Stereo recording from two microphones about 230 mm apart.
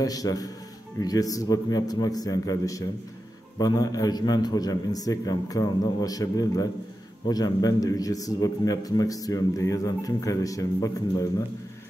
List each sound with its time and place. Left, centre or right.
0.0 s a man's voice: centre